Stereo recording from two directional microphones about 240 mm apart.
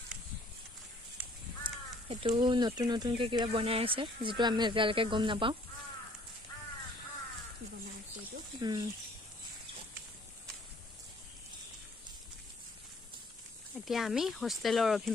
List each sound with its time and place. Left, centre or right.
2.0 s speech: right
8.2 s snake: centre
13.8 s speech: centre